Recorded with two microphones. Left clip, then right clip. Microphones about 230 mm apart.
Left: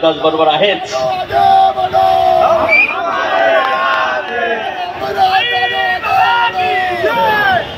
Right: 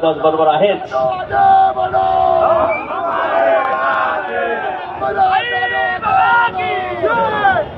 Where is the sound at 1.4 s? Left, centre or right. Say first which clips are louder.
Left 1 dB; left.